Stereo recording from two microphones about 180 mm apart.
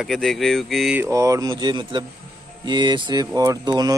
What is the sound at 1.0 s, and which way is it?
Speech, 15° right (ahead or behind).